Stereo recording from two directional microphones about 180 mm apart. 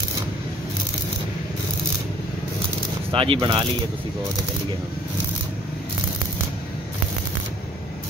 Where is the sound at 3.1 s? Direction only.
30° right (ahead or behind).